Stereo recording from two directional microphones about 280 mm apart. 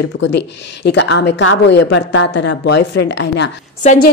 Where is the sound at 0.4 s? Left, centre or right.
Left.